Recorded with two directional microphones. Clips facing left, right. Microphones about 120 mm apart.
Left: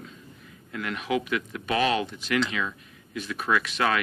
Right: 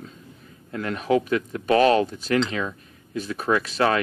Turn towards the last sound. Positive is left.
turn(degrees=-35)  # may be behind; listen again after turning